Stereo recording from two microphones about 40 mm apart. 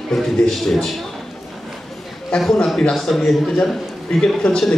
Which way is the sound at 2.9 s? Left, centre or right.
Centre.